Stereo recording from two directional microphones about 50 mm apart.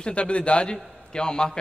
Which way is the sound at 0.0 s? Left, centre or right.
Left.